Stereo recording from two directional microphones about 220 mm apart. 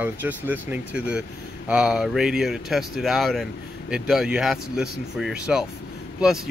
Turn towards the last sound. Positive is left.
turn(degrees=0)  # may be behind; listen again after turning